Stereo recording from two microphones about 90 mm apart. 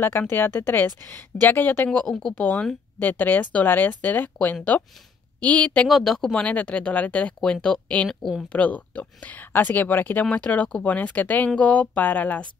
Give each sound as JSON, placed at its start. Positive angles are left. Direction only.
{"t": 0.0, "sound": "speech", "side_deg": 25}
{"t": 1.9, "sound": "speech", "side_deg": 5}
{"t": 2.3, "sound": "speech", "side_deg": 15}
{"t": 5.9, "sound": "speech", "side_deg": 0}
{"t": 8.5, "sound": "speech", "side_deg": 15}